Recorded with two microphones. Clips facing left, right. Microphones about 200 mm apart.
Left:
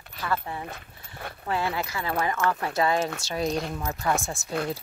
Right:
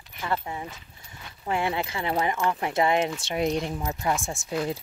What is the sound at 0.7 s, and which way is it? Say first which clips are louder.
Dog: left 4 dB; 55° left (ahead or behind).